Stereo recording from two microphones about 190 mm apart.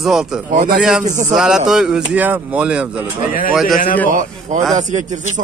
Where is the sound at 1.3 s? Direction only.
5° right (ahead or behind).